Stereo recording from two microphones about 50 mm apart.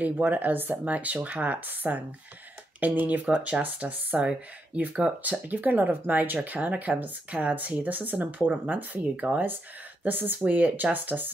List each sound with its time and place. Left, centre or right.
0.0 s speech: right
3.3 s speech: right